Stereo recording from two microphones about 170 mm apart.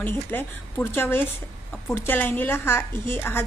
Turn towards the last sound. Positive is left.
turn(degrees=15)  # may be behind; listen again after turning